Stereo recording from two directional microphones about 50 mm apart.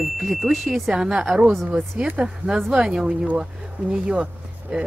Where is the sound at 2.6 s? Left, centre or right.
Centre.